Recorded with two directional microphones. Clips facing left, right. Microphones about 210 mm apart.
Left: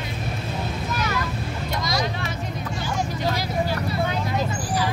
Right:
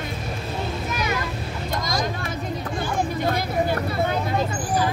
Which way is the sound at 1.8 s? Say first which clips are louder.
Left 1 dB; 50° right (ahead or behind).